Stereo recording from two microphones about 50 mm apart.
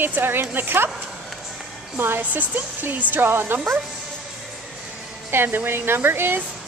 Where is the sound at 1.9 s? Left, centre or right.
Right.